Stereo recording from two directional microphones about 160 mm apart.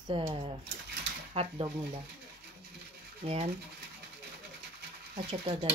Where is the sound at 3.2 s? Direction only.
35° right (ahead or behind).